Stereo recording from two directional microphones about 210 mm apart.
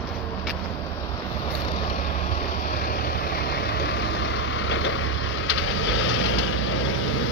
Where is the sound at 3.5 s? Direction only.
50° left (ahead or behind); by 6.3 s 70° left (ahead or behind).